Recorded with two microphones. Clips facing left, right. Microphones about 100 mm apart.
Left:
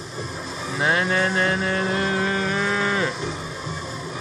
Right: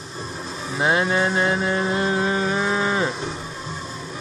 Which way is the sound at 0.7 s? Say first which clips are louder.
Right 2 dB; 20° right (ahead or behind).